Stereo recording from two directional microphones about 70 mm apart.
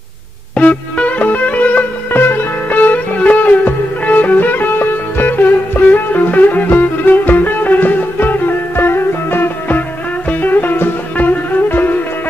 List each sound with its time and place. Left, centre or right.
0.6 s music: left